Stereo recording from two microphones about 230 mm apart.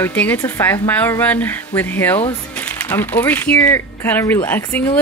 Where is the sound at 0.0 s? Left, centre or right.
Centre.